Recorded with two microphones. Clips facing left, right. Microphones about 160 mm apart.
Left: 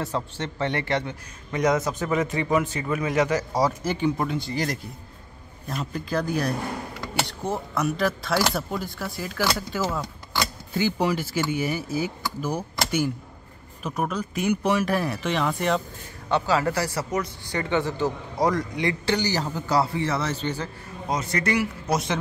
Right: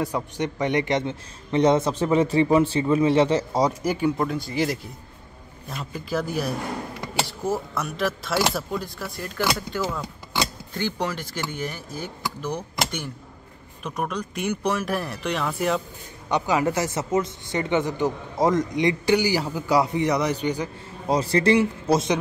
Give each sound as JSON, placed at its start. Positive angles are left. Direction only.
{"t": 0.0, "sound": "a man's voice", "side_deg": -15}
{"t": 3.8, "sound": "a man's voice", "side_deg": -10}
{"t": 13.8, "sound": "speech", "side_deg": 5}
{"t": 16.3, "sound": "a man's voice", "side_deg": -15}
{"t": 21.1, "sound": "a man's voice", "side_deg": -30}